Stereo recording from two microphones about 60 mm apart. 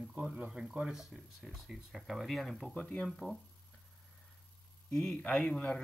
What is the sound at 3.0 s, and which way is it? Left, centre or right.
Speech, centre.